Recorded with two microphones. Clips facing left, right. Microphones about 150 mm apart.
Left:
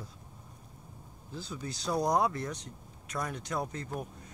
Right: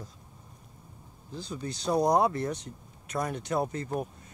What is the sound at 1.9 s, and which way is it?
Speech, 20° right (ahead or behind).